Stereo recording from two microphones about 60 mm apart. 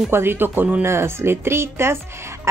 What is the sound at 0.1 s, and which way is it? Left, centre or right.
Speech, right.